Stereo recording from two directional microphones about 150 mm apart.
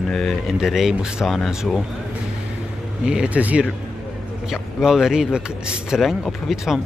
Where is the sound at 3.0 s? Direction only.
5° right (ahead or behind).